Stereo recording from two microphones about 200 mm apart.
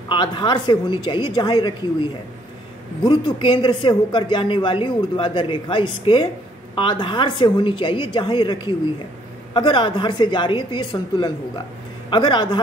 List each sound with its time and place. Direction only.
0.1 s speech: 25° left (ahead or behind)